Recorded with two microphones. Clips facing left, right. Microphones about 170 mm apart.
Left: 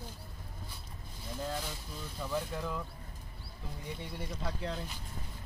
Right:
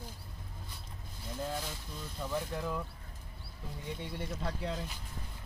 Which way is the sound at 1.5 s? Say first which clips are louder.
Even; centre (ahead or behind).